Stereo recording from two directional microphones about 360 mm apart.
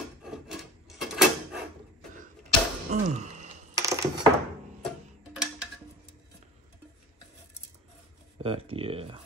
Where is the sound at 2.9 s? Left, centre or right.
Centre.